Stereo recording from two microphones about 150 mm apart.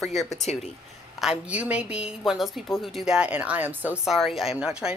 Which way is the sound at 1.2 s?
5° right (ahead or behind).